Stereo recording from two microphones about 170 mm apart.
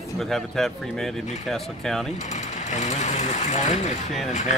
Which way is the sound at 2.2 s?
45° left (ahead or behind).